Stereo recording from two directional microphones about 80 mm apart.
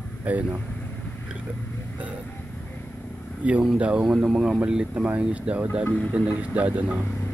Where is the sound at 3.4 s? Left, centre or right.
Centre.